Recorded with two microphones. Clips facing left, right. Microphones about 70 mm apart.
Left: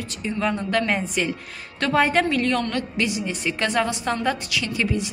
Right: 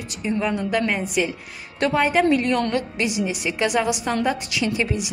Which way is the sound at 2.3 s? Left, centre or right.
Centre.